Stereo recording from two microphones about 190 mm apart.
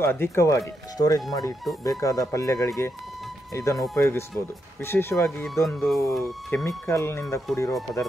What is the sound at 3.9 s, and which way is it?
Speech, 15° left (ahead or behind).